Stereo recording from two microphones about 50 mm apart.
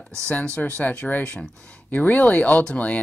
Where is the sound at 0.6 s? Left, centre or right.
Left.